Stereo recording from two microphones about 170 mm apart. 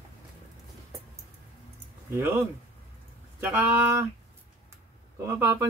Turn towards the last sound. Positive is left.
turn(degrees=-20)  # may be behind; listen again after turning